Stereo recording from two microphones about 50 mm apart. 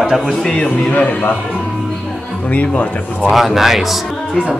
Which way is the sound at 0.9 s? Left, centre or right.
Left.